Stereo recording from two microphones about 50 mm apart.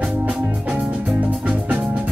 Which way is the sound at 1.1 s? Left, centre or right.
Right.